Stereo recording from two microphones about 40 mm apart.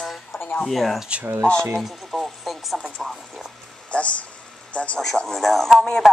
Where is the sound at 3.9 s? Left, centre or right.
Left.